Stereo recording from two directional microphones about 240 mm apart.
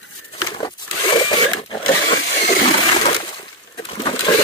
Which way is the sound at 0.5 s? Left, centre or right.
Centre.